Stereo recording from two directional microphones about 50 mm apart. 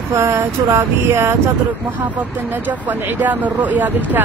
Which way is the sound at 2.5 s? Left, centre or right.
Right.